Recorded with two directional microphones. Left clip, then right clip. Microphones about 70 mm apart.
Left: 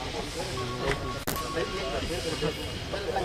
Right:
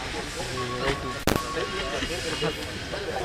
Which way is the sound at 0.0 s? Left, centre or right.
Right.